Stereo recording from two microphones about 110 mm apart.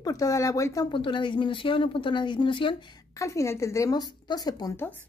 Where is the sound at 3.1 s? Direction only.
30° left (ahead or behind).